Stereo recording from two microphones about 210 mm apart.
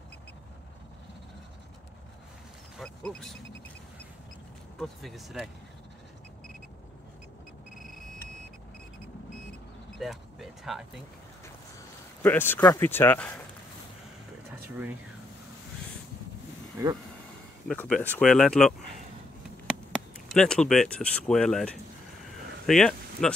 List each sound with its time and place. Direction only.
2.8 s speech: 5° left (ahead or behind)
4.7 s speech: centre (ahead or behind)
9.9 s speech: centre (ahead or behind)
12.2 s speech: 10° left (ahead or behind)
16.8 s speech: 15° right (ahead or behind)
17.6 s speech: 5° left (ahead or behind)
20.2 s speech: 5° left (ahead or behind)